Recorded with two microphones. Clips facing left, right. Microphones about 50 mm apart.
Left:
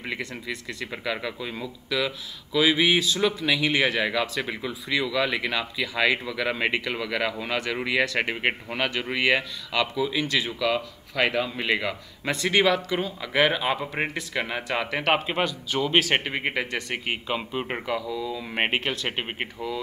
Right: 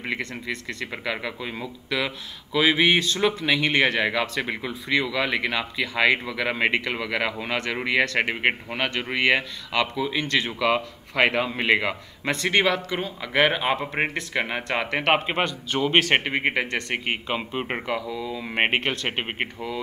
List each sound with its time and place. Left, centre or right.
0.9 s speech: centre
10.3 s speech: right
12.4 s speech: centre